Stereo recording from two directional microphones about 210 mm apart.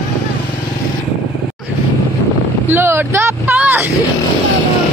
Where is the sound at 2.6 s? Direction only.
10° right (ahead or behind).